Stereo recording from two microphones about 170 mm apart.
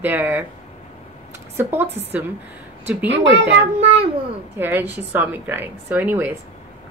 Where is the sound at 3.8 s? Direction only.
35° right (ahead or behind).